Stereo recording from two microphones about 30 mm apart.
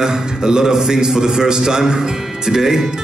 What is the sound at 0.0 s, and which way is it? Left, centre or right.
A man's voice, right.